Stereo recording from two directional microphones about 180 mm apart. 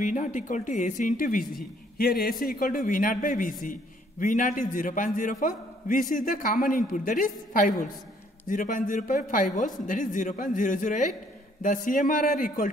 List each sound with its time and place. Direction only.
0.0 s speech: 45° left (ahead or behind)